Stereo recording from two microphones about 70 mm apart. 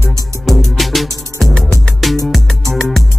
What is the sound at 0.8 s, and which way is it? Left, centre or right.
Music, centre.